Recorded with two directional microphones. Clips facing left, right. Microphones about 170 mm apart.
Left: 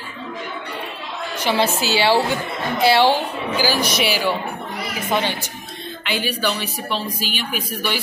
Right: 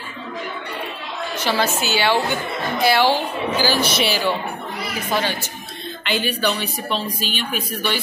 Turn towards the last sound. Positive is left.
turn(degrees=10)  # may be behind; listen again after turning